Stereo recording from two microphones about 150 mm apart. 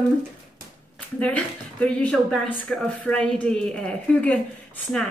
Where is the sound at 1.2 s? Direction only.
10° left (ahead or behind).